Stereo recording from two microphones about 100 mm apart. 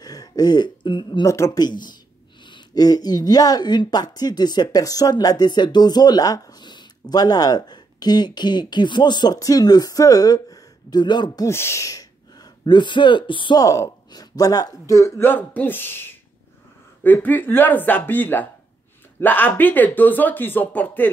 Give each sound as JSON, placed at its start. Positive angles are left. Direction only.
{"t": 0.0, "sound": "a sound", "side_deg": 40}
{"t": 1.2, "sound": "speech", "side_deg": 35}
{"t": 1.6, "sound": "speech", "side_deg": 45}
{"t": 11.4, "sound": "speech", "side_deg": 25}
{"t": 13.6, "sound": "speech", "side_deg": 30}
{"t": 17.0, "sound": "speech", "side_deg": 20}